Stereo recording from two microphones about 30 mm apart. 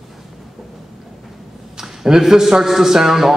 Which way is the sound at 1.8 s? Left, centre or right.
Centre.